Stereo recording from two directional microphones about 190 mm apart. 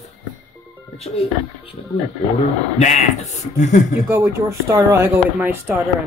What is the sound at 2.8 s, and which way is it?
Speech, 35° left (ahead or behind).